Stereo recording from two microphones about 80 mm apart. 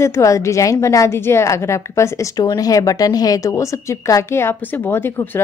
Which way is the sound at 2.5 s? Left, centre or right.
Left.